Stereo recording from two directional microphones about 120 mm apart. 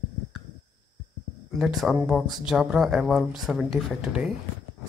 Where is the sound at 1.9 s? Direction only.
15° right (ahead or behind).